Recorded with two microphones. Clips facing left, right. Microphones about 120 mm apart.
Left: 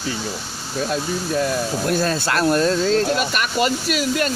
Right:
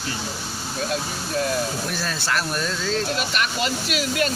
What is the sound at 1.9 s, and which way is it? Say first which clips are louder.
Speech: left 7 dB; 50° left (ahead or behind).